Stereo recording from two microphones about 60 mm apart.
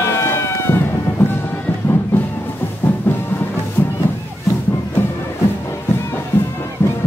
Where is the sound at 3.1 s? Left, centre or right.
Left.